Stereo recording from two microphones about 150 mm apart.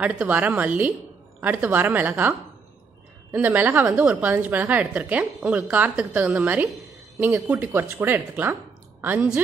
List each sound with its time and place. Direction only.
0.0 s a woman's voice: 10° right (ahead or behind)
7.4 s a woman's voice: 10° right (ahead or behind)